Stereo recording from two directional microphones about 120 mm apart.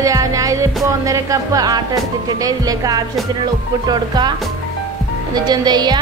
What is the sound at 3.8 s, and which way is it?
Speech, 35° right (ahead or behind).